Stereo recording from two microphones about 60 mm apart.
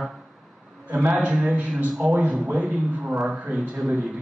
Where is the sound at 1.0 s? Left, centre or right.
Centre.